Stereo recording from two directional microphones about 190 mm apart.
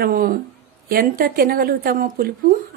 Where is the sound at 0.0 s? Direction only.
50° right (ahead or behind).